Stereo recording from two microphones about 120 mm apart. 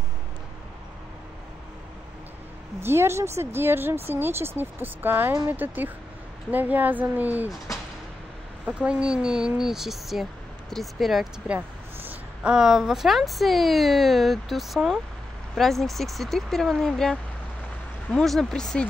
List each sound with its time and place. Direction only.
2.8 s speech: 20° right (ahead or behind)
8.6 s speech: 10° right (ahead or behind); by 18.9 s 5° left (ahead or behind)